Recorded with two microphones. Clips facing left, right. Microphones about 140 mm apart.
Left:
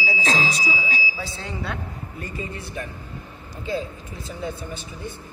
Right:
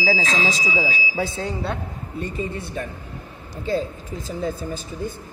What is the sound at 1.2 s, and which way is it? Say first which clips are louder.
Speech: right 8 dB; 50° right (ahead or behind).